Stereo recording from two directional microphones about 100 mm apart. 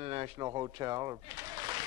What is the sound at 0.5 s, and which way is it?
Speech, 35° right (ahead or behind).